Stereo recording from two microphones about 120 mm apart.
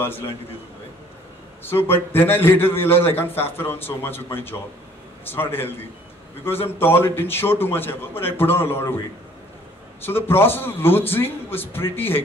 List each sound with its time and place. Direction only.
1.6 s a man's voice: 20° left (ahead or behind)
10.0 s a man's voice: 20° left (ahead or behind)